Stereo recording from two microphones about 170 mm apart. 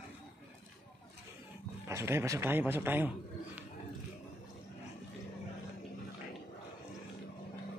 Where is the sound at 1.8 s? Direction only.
15° right (ahead or behind).